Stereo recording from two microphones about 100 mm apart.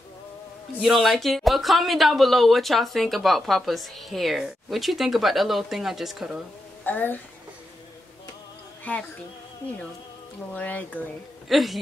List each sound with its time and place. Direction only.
0.7 s speech: centre (ahead or behind)
6.8 s speech: 20° left (ahead or behind)
8.9 s speech: 15° left (ahead or behind)
10.5 s speech: 15° left (ahead or behind)
11.4 s speech: centre (ahead or behind)